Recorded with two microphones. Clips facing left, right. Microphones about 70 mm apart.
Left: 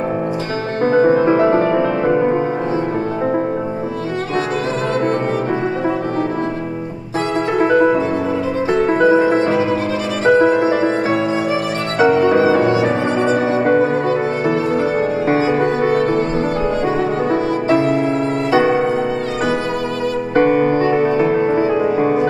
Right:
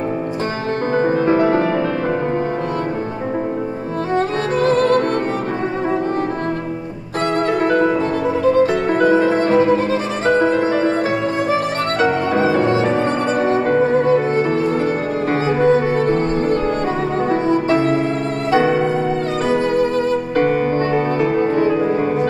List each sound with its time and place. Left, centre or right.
0.9 s music: centre
4.6 s music: right
7.5 s music: centre
12.0 s music: centre
18.6 s music: centre
20.3 s music: centre